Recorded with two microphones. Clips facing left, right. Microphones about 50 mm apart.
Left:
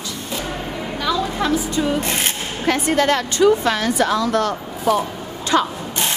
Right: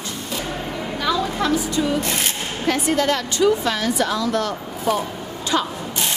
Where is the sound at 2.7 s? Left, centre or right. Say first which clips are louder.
Left 2 dB; left.